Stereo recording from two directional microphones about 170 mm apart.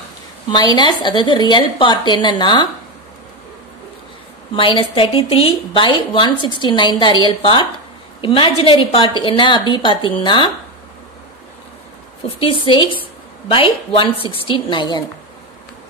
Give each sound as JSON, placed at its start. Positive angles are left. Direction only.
{"t": 0.5, "sound": "a woman's voice", "side_deg": 25}
{"t": 4.6, "sound": "a woman's voice", "side_deg": 30}
{"t": 12.3, "sound": "a woman's voice", "side_deg": 30}